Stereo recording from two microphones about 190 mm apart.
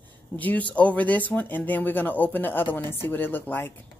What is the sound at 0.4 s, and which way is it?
Speech, 10° left (ahead or behind).